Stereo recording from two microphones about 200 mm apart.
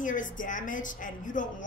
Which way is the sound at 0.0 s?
40° left (ahead or behind).